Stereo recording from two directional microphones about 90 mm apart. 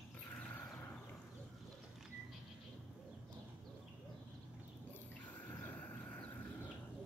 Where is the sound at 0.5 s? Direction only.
20° left (ahead or behind).